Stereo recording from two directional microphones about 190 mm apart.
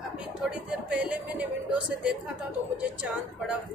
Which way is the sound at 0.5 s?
5° right (ahead or behind).